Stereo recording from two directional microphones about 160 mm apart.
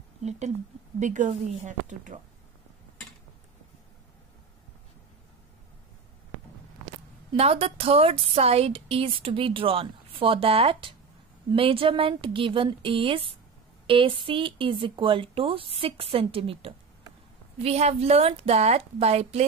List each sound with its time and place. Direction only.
0.2 s speech: 45° right (ahead or behind)
7.3 s a woman's voice: 35° right (ahead or behind)